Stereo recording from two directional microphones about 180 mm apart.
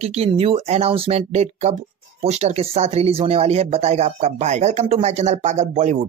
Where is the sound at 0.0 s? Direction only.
35° right (ahead or behind).